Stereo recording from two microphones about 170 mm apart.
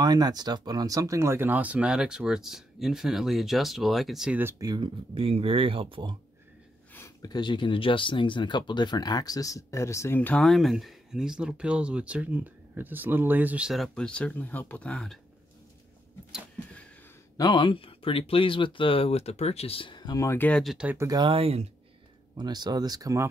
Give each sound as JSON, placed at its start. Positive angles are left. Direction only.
{"t": 0.0, "sound": "speech", "side_deg": -25}
{"t": 7.2, "sound": "speech", "side_deg": 25}
{"t": 17.4, "sound": "speech", "side_deg": 25}
{"t": 20.7, "sound": "speech", "side_deg": -10}
{"t": 21.2, "sound": "speech", "side_deg": -35}